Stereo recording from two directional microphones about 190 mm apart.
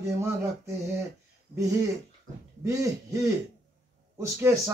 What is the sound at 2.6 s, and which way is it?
A man's voice, 15° right (ahead or behind).